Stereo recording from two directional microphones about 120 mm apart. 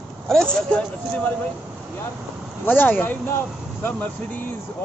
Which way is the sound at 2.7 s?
15° left (ahead or behind).